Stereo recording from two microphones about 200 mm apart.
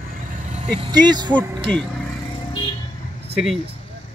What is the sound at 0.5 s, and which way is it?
Speech, 25° right (ahead or behind).